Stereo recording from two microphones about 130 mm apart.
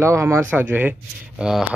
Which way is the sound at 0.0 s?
20° right (ahead or behind).